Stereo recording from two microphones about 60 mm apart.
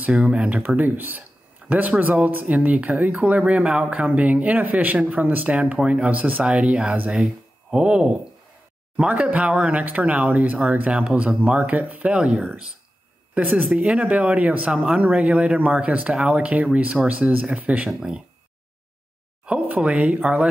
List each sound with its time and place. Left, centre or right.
0.0 s speech: right
0.7 s speech: right; by 12.4 s centre
13.3 s speech: right
17.8 s speech: centre
19.4 s speech: right